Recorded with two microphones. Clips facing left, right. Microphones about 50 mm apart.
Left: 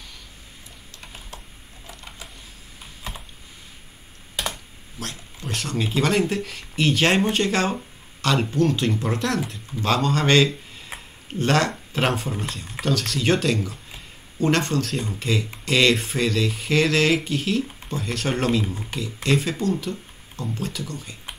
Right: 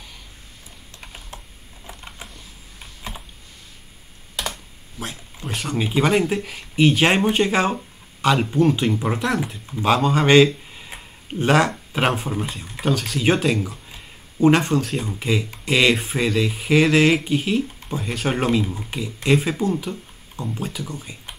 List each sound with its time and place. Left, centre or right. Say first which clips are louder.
1.3 s typing: right 1 dB; right
1.9 s a sound: right 2 dB; right
4.4 s computer keyboard: even; centre
4.9 s speech: right 2 dB; centre